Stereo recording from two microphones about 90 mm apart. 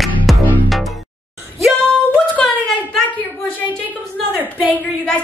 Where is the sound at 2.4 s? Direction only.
5° left (ahead or behind).